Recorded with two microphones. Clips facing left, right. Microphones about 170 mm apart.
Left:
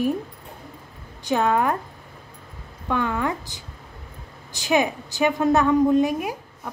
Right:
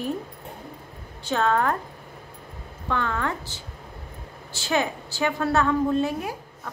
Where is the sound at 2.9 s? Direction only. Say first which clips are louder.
Left 3 dB; 15° left (ahead or behind).